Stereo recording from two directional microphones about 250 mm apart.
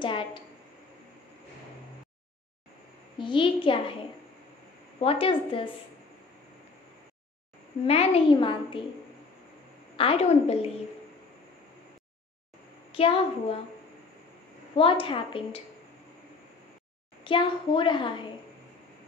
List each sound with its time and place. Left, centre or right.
0.0 s a woman's voice: centre
3.2 s a woman's voice: centre
5.0 s a woman's voice: left
7.8 s a woman's voice: left
9.9 s a woman's voice: left
12.9 s a woman's voice: left
14.8 s a woman's voice: left
17.2 s a woman's voice: centre